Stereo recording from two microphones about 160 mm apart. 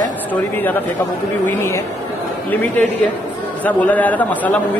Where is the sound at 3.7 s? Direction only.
10° left (ahead or behind).